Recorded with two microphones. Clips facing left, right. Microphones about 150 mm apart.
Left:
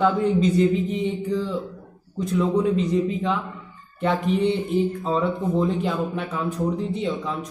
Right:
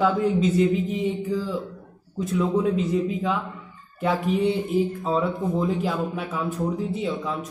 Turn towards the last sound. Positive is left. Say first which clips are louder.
# left 1 dB
turn(degrees=-5)  # may be behind; listen again after turning